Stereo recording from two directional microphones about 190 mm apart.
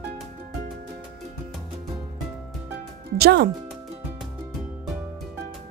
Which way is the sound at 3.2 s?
60° right (ahead or behind).